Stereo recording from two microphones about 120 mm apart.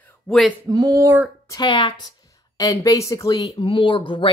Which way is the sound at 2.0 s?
30° left (ahead or behind).